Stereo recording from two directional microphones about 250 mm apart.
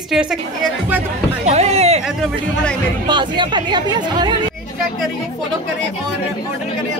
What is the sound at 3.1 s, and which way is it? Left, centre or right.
Speech, centre.